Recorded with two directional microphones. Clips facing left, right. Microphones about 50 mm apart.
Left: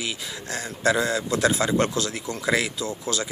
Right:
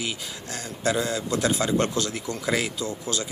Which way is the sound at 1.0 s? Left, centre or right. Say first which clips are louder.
Left 2 dB; left.